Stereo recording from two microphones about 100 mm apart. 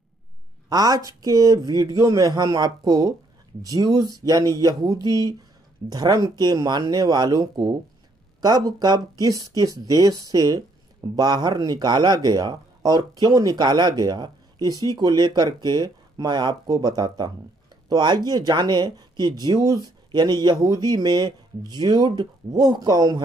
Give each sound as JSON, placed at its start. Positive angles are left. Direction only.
{"t": 0.7, "sound": "speech", "side_deg": -40}